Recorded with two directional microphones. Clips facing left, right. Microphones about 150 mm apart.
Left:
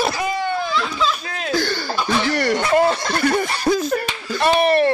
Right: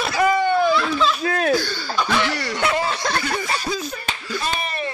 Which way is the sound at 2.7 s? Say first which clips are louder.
Left 6 dB; 55° left (ahead or behind).